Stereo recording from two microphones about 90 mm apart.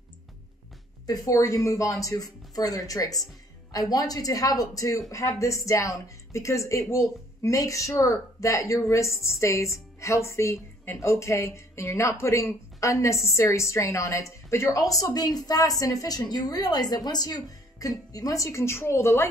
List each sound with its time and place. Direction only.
1.0 s a woman's voice: 40° left (ahead or behind)